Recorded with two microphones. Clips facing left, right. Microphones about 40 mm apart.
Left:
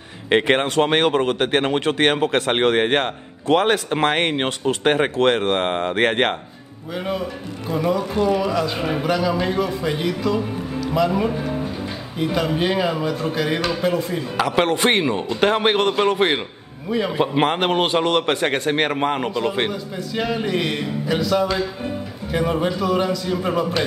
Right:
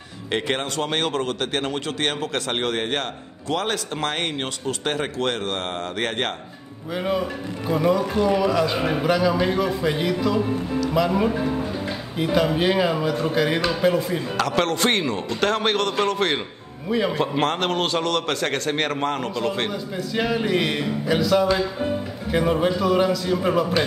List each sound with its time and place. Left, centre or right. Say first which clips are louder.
0.3 s speech: left 7 dB; left
7.0 s a man's voice: right 1 dB; centre
14.3 s speech: left 4 dB; centre
19.7 s a man's voice: even; centre